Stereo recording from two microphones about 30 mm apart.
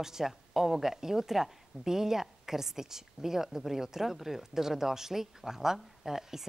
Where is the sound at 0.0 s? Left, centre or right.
Centre.